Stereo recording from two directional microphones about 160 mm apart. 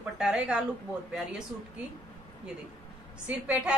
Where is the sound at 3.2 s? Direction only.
5° right (ahead or behind).